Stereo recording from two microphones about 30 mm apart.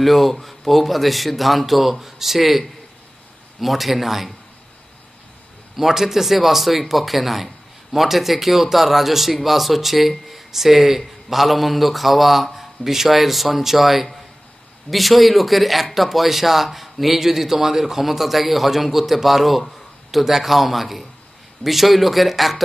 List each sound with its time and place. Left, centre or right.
0.0 s speech: centre
3.6 s speech: centre
5.8 s a man's voice: centre